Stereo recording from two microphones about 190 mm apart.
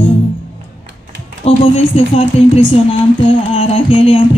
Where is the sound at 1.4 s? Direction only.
35° left (ahead or behind).